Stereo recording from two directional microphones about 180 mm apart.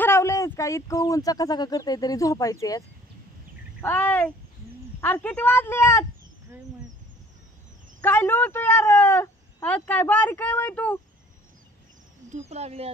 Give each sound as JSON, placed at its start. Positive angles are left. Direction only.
{"t": 0.0, "sound": "a woman's voice", "side_deg": 15}
{"t": 3.8, "sound": "a woman's voice", "side_deg": 10}
{"t": 8.0, "sound": "a woman's voice", "side_deg": 10}
{"t": 12.3, "sound": "speech", "side_deg": -40}